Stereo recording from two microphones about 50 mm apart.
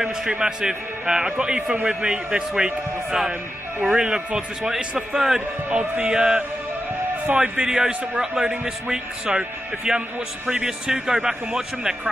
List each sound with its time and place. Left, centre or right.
0.3 s a man's voice: centre
5.7 s music: right
7.3 s a man's voice: centre